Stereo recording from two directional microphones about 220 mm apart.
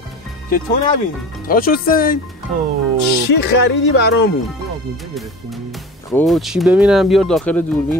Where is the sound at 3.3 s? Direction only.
50° left (ahead or behind).